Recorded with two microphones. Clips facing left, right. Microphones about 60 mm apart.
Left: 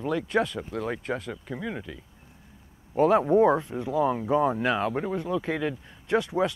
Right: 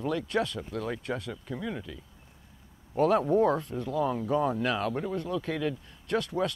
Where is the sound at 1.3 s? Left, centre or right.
Centre.